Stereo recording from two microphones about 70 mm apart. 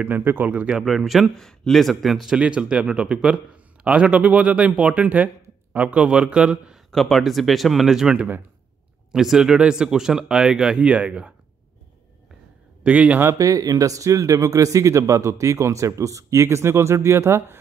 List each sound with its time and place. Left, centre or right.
0.0 s speech: right
0.7 s a man's voice: centre
2.4 s a man's voice: centre
6.9 s a man's voice: centre
12.8 s speech: right
13.4 s speech: right